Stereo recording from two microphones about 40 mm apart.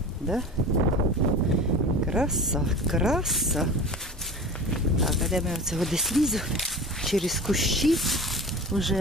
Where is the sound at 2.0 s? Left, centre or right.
Centre.